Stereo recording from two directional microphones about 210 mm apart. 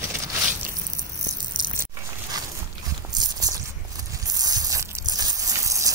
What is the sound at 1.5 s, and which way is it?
Biting, 20° right (ahead or behind).